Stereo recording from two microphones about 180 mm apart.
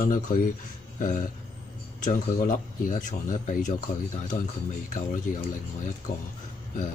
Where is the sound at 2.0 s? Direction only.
45° left (ahead or behind).